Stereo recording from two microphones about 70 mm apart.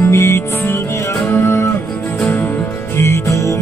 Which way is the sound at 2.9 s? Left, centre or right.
Left.